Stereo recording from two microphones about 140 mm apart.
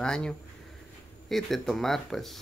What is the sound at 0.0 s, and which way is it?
Speech, 5° left (ahead or behind).